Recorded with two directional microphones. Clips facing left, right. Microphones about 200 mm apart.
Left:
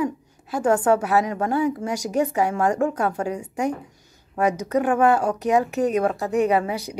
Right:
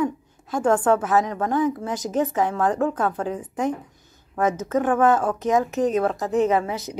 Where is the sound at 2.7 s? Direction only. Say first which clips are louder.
Left 1 dB; 45° left (ahead or behind).